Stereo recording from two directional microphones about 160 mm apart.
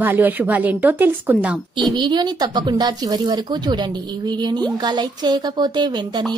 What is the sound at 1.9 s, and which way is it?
Speech, 25° right (ahead or behind).